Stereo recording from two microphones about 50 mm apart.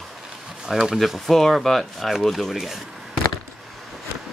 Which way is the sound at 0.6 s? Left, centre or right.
Centre.